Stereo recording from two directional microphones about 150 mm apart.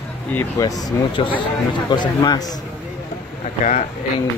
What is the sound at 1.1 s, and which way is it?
Speech, 35° left (ahead or behind).